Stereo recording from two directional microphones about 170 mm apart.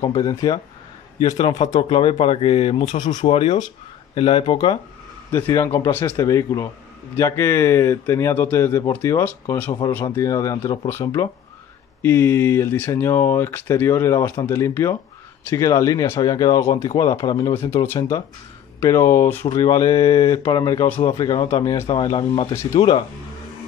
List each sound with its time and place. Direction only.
0.0 s speech: 20° left (ahead or behind)
1.6 s speech: 35° left (ahead or behind)
3.3 s speech: 40° left (ahead or behind)
5.3 s speech: 15° left (ahead or behind)
18.8 s speech: 15° left (ahead or behind)
19.4 s speech: 35° left (ahead or behind)
19.7 s speech: 20° left (ahead or behind)
21.0 s speech: 35° left (ahead or behind)
22.5 s speech: 15° left (ahead or behind)
22.8 s speech: 30° left (ahead or behind)